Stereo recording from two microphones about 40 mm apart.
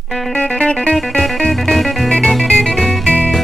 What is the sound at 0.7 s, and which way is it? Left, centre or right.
Music, left.